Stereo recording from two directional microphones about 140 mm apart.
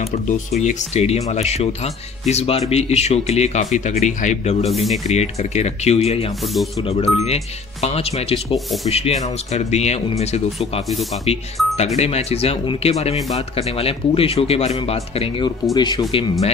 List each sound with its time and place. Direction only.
0.6 s speech: 55° left (ahead or behind)
15.7 s speech: 30° left (ahead or behind)